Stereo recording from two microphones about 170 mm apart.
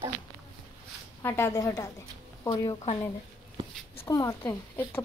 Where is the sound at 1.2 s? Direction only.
15° left (ahead or behind).